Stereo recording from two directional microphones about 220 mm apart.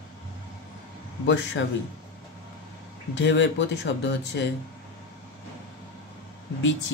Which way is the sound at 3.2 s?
55° left (ahead or behind).